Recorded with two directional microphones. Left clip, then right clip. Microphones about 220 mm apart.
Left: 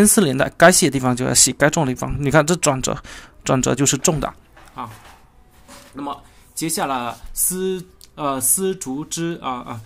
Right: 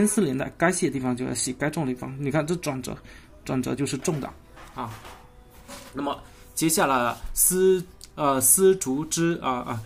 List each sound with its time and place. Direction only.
0.0 s speech: 25° left (ahead or behind)
6.0 s speech: 10° left (ahead or behind)